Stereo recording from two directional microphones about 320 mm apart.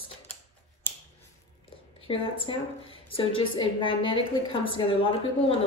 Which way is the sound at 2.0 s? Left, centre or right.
Centre.